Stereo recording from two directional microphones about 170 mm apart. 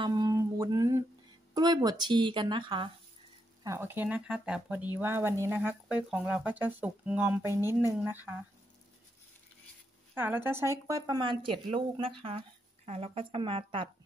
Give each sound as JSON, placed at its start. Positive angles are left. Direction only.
{"t": 0.0, "sound": "a sound", "side_deg": -20}
{"t": 1.5, "sound": "speech", "side_deg": -25}
{"t": 3.6, "sound": "speech", "side_deg": -15}
{"t": 10.1, "sound": "speech", "side_deg": -10}